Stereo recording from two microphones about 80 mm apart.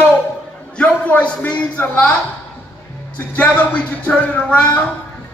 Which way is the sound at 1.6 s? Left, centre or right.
Centre.